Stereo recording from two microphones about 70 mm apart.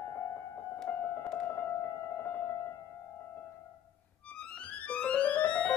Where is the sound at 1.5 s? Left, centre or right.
Left.